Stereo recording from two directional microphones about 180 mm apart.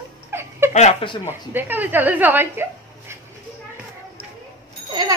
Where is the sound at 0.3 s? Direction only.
15° right (ahead or behind).